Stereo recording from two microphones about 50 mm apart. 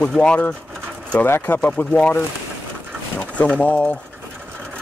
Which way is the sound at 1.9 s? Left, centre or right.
Left.